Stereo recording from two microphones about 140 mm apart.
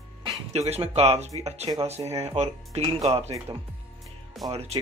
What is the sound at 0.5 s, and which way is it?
Speech, 50° right (ahead or behind).